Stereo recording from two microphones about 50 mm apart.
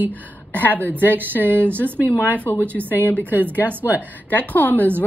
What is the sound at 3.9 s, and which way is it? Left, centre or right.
Speech, left.